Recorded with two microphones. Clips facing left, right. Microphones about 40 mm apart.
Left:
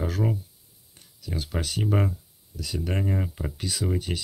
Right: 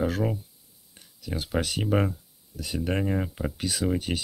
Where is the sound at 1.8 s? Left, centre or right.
Centre.